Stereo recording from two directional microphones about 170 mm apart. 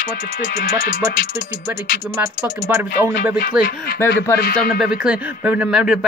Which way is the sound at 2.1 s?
15° right (ahead or behind).